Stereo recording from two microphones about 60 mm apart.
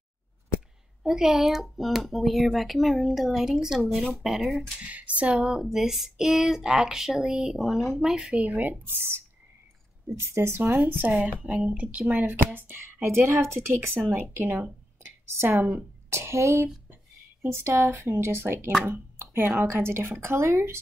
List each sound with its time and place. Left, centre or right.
1.0 s speech: centre
4.8 s speech: right; by 8.4 s centre
8.4 s a woman's voice: right
15.0 s a sound: right
15.5 s a woman's voice: right
16.1 s speech: right